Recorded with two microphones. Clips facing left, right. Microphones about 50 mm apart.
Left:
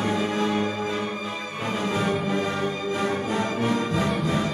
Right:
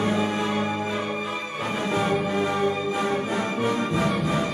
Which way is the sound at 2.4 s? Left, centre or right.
Centre.